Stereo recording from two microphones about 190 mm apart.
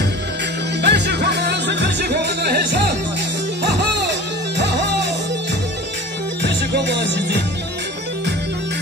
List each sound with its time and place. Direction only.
0.8 s music: 60° right (ahead or behind)
6.7 s music: 65° right (ahead or behind)